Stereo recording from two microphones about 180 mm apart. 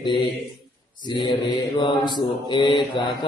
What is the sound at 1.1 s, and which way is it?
Mantra, 25° left (ahead or behind).